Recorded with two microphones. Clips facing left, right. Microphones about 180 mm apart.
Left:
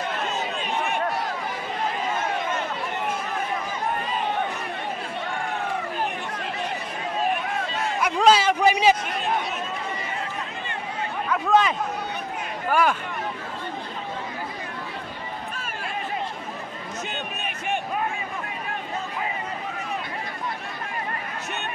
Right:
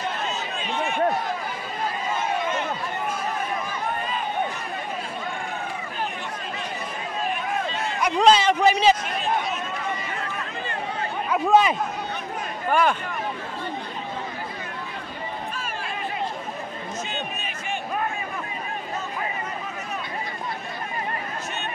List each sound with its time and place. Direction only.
8.0 s a sound: 5° left (ahead or behind)
11.2 s chatter: 15° right (ahead or behind)
12.7 s speech: 5° left (ahead or behind)